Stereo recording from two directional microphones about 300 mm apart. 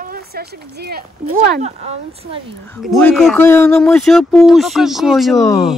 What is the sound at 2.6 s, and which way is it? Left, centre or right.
Speech, centre.